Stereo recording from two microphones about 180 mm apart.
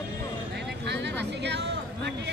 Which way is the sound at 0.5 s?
70° right (ahead or behind).